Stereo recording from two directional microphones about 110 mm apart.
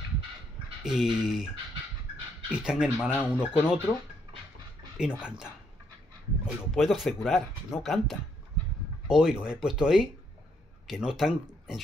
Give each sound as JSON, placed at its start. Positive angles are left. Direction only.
{"t": 0.8, "sound": "speech", "side_deg": -5}
{"t": 2.5, "sound": "speech", "side_deg": -10}
{"t": 3.1, "sound": "speech", "side_deg": 15}
{"t": 4.9, "sound": "speech", "side_deg": -10}
{"t": 6.7, "sound": "speech", "side_deg": 0}